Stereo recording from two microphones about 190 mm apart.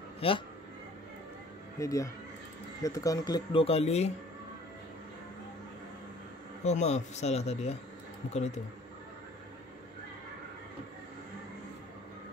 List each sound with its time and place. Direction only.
0.2 s speech: 30° left (ahead or behind)
1.8 s speech: 15° left (ahead or behind); by 4.1 s 35° left (ahead or behind)
6.6 s speech: 35° left (ahead or behind)